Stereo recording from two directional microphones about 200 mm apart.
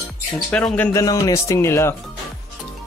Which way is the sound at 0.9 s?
15° left (ahead or behind).